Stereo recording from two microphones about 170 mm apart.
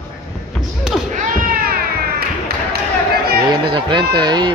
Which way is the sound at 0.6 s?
Centre (ahead or behind).